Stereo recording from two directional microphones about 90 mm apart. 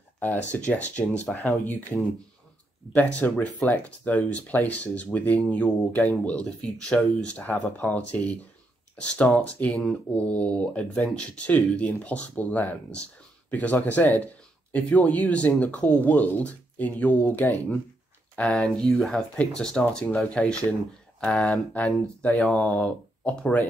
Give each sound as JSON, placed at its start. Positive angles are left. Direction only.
{"t": 0.2, "sound": "speech", "side_deg": 15}
{"t": 2.9, "sound": "speech", "side_deg": 15}
{"t": 21.7, "sound": "speech", "side_deg": 15}